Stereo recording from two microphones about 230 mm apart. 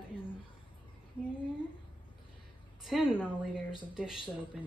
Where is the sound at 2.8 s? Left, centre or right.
Centre.